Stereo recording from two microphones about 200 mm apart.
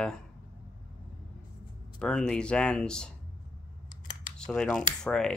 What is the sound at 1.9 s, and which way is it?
Speech, 5° left (ahead or behind).